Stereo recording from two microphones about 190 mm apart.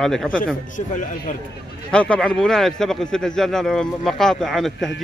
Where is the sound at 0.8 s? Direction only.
45° left (ahead or behind).